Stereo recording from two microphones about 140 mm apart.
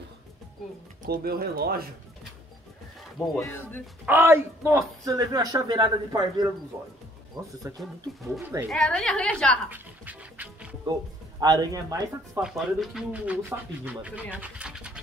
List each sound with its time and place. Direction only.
1.0 s speech: 90° right
3.3 s a woman's voice: 20° left (ahead or behind)
4.0 s speech: 15° right (ahead or behind)
7.8 s speech: centre (ahead or behind)
8.4 s speech: 15° right (ahead or behind)
8.6 s a woman's voice: 5° left (ahead or behind)
9.7 s music: 10° right (ahead or behind)
11.4 s speech: 25° right (ahead or behind)
12.4 s speech: 5° right (ahead or behind)